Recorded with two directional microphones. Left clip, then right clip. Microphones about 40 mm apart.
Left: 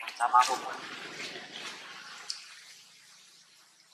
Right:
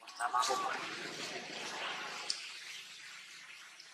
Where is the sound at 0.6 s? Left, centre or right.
Centre.